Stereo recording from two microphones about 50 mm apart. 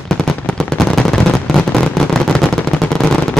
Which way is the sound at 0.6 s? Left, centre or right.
Centre.